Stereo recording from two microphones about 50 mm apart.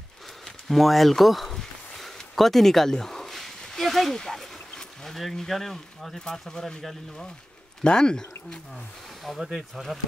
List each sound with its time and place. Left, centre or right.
0.7 s a sound: centre
4.2 s speech: centre
7.8 s speech: centre
9.4 s speech: centre